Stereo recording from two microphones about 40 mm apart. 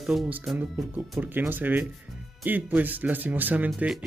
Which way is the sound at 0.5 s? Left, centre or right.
Centre.